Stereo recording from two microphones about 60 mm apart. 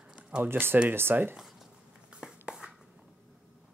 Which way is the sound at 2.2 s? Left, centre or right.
Centre.